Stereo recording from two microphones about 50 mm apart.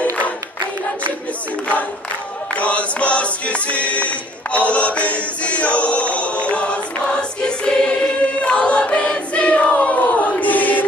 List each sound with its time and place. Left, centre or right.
2.5 s music: left
6.4 s choir: left